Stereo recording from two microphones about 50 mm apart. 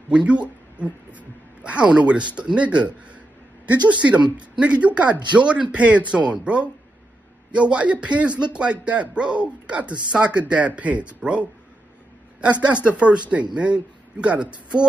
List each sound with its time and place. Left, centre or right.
0.1 s speech: right